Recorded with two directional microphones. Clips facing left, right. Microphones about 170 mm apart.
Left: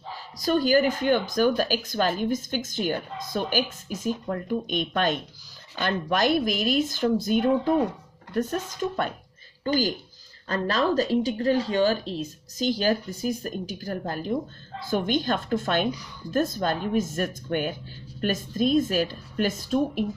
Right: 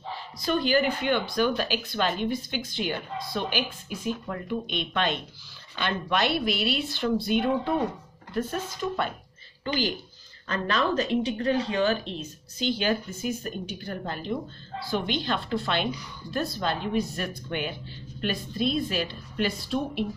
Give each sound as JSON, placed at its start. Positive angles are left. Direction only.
{"t": 0.1, "sound": "speech", "side_deg": 40}